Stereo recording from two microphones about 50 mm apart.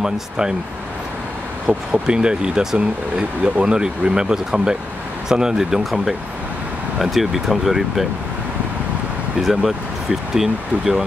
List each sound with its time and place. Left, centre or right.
0.0 s speech: centre
1.7 s speech: right
2.0 s speech: centre
9.4 s speech: centre